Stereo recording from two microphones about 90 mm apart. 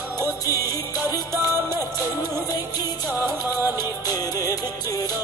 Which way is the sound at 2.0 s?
45° left (ahead or behind).